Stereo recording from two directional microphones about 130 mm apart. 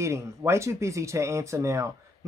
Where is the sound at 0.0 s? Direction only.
20° right (ahead or behind).